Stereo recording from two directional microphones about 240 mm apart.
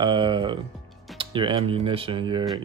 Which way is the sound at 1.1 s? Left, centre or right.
Right.